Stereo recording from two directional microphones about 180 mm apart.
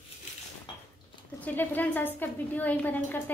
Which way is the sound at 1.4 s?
10° left (ahead or behind).